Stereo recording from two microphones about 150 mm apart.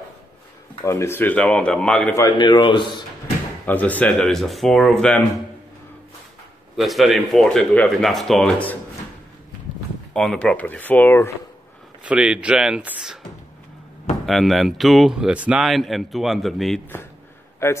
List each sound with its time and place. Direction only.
0.8 s speech: 15° left (ahead or behind)
2.1 s speech: 25° left (ahead or behind)
3.6 s speech: 10° left (ahead or behind)
6.8 s speech: centre (ahead or behind)
10.1 s speech: 5° left (ahead or behind)
12.0 s speech: 10° right (ahead or behind)
14.2 s speech: centre (ahead or behind)
17.6 s speech: 20° left (ahead or behind)